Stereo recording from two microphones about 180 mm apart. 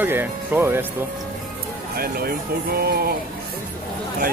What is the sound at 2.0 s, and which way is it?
Speech, 55° right (ahead or behind).